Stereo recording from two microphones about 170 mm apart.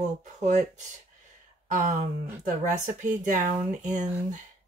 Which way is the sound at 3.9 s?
45° right (ahead or behind).